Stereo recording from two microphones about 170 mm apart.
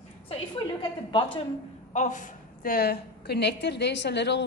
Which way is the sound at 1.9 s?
45° left (ahead or behind).